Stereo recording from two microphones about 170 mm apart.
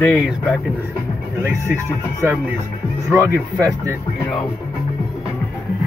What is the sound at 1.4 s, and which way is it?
Speech, 15° right (ahead or behind).